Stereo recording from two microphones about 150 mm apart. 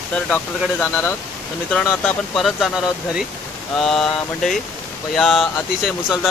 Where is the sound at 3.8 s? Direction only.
Centre (ahead or behind).